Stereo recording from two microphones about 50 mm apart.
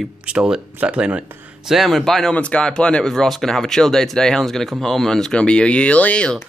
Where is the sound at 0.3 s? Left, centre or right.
Right.